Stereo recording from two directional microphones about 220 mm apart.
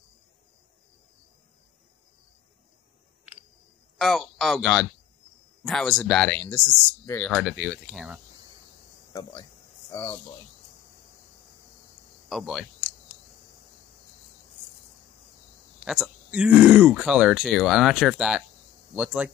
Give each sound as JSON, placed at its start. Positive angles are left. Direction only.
{"t": 4.0, "sound": "speech", "side_deg": 0}
{"t": 9.1, "sound": "speech", "side_deg": 20}
{"t": 12.3, "sound": "speech", "side_deg": 0}
{"t": 15.8, "sound": "speech", "side_deg": -5}